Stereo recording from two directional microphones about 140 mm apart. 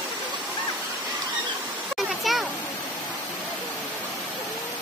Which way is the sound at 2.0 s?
Centre (ahead or behind).